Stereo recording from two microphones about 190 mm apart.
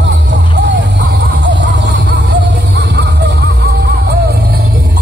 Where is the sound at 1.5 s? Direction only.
70° right (ahead or behind).